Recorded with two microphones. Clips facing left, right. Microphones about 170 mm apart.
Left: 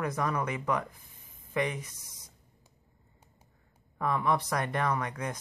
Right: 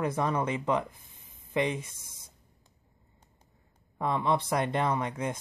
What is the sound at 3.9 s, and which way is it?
Speech, 25° right (ahead or behind).